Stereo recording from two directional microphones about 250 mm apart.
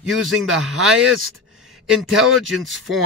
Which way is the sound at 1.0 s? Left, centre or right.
Right.